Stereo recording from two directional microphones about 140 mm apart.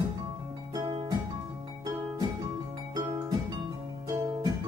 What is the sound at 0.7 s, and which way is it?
Music, 30° right (ahead or behind).